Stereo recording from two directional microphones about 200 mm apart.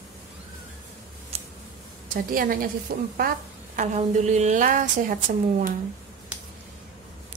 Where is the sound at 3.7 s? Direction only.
35° right (ahead or behind).